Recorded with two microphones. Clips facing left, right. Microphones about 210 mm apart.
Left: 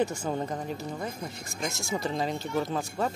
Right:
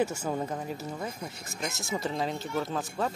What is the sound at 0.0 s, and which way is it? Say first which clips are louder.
Speech: left 1 dB; 5° right (ahead or behind).